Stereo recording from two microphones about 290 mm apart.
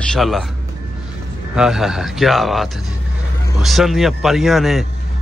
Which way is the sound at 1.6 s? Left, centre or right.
Centre.